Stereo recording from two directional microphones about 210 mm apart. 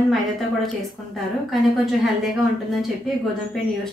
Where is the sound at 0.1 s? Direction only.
Centre (ahead or behind).